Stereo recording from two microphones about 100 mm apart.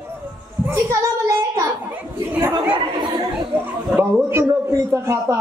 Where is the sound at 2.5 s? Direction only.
45° right (ahead or behind).